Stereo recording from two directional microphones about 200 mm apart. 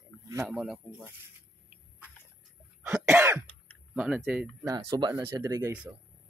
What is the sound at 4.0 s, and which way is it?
Speech, 5° right (ahead or behind).